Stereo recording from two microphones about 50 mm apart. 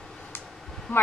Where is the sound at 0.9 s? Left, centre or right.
Left.